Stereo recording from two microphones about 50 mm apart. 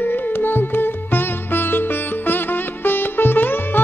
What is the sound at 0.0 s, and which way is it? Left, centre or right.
Music, left.